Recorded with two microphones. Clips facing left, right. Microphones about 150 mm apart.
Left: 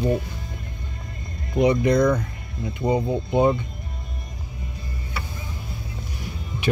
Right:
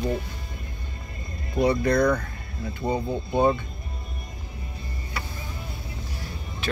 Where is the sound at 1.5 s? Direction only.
20° left (ahead or behind).